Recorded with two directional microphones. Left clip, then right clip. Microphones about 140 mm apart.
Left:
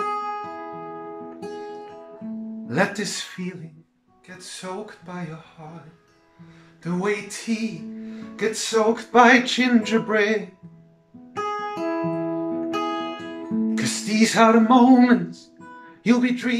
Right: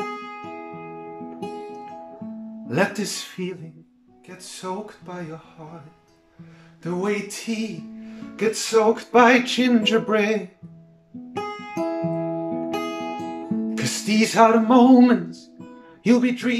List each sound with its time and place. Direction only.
0.0 s music: 20° right (ahead or behind)
6.8 s music: 10° right (ahead or behind)
11.3 s music: 25° right (ahead or behind)
13.7 s music: 10° right (ahead or behind)